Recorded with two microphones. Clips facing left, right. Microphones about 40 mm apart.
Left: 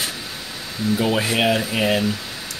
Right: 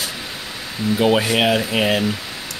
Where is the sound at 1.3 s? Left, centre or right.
Centre.